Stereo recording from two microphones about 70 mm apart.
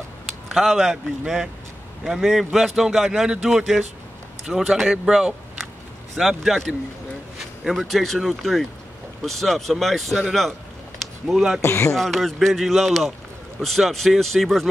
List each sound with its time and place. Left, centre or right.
0.5 s speech: centre
11.0 s a sound: centre
11.6 s speech: left
11.9 s speech: centre